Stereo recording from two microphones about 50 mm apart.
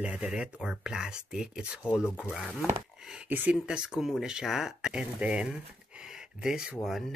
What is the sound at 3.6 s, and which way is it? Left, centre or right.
Speech, centre.